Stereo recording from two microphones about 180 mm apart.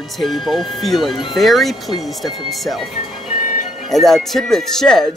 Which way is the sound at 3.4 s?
40° left (ahead or behind).